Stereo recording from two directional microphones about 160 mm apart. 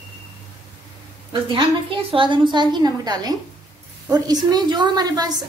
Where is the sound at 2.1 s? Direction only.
30° right (ahead or behind).